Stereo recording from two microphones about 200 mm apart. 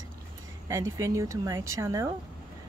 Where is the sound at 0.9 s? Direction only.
15° right (ahead or behind).